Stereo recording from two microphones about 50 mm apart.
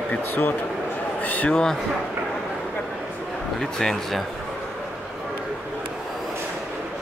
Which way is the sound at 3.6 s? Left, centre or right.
Centre.